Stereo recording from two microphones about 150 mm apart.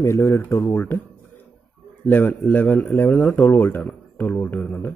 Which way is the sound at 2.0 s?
10° left (ahead or behind).